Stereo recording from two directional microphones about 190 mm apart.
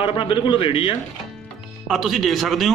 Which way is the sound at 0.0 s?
25° left (ahead or behind).